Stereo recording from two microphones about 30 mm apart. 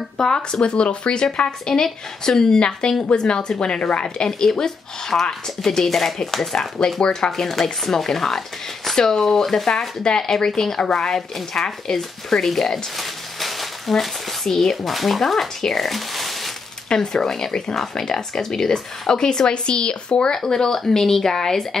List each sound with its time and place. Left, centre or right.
0.2 s a woman's voice: left
1.7 s a woman's voice: left
4.6 s speech: centre
6.5 s speech: left
7.2 s speech: centre
9.7 s speech: left
10.8 s speech: left
11.1 s speech: centre
12.7 s a sound: centre
14.9 s speech: centre
15.6 s a sound: centre
16.9 s speech: left
20.4 s speech: centre